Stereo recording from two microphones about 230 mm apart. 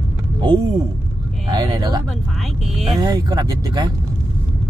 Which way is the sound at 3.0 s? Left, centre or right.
Centre.